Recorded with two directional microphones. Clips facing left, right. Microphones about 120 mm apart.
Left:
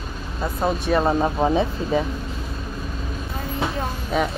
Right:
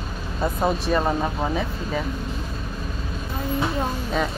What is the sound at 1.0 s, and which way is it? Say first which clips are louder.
Speech: left 4 dB; 20° left (ahead or behind).